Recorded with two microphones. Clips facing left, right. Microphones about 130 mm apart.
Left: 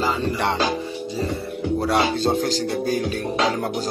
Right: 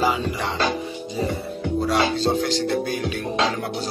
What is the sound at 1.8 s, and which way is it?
Speech, 50° left (ahead or behind).